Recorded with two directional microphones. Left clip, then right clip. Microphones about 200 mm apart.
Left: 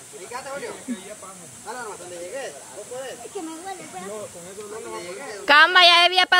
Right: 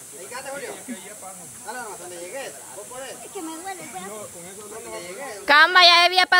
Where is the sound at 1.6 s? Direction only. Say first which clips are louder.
Even; 25° right (ahead or behind).